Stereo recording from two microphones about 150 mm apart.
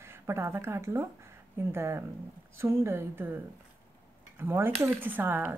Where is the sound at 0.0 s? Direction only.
15° right (ahead or behind).